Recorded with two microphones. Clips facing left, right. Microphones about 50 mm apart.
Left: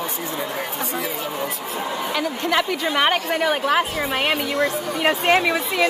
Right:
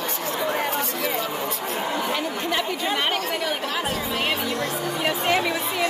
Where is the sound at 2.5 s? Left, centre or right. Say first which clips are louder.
Left 4 dB; left.